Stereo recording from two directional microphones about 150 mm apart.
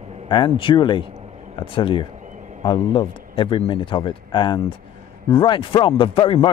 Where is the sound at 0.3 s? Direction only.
35° left (ahead or behind).